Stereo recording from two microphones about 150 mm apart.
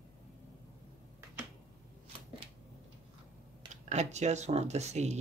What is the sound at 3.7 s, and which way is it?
Speech, 50° right (ahead or behind).